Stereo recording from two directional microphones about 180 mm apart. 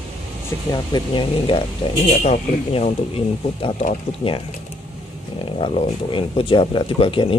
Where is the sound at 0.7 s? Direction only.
25° left (ahead or behind).